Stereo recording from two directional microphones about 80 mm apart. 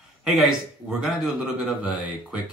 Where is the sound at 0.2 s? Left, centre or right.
Centre.